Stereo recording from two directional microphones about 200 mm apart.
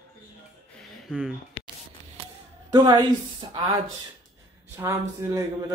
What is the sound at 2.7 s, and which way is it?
Speech, 20° right (ahead or behind).